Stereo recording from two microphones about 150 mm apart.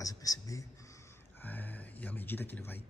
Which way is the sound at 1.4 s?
10° left (ahead or behind).